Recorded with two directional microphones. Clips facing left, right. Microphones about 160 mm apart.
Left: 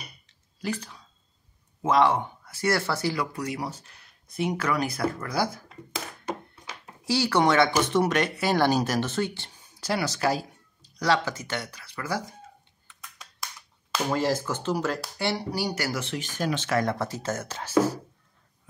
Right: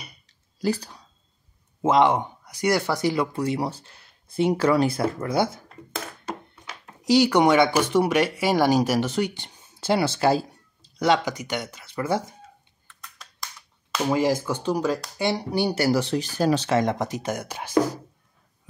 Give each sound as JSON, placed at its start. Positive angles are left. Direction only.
{"t": 0.3, "sound": "a sound", "side_deg": -35}
{"t": 1.8, "sound": "speech", "side_deg": -20}
{"t": 7.0, "sound": "speech", "side_deg": -20}
{"t": 12.8, "sound": "computer keyboard", "side_deg": 0}
{"t": 14.1, "sound": "speech", "side_deg": -10}
{"t": 16.7, "sound": "speech", "side_deg": -20}